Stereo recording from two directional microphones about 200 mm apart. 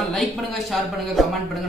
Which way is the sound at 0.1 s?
Centre (ahead or behind).